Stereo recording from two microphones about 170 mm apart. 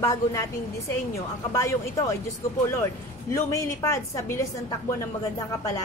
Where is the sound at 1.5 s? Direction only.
15° left (ahead or behind).